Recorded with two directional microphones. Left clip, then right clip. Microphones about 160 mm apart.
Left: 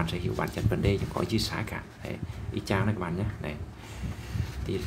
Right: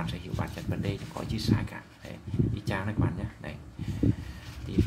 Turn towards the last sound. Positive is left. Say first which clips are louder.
# right 2 dB
turn(degrees=15)  # may be behind; listen again after turning